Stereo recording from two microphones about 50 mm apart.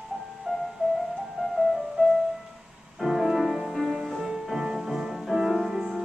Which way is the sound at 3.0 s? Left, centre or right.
Centre.